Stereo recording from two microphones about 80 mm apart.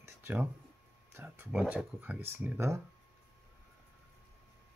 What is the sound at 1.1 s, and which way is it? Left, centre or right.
Speech, right.